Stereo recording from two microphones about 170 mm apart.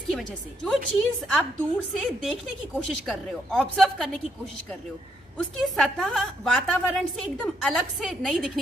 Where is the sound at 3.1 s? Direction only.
Centre (ahead or behind).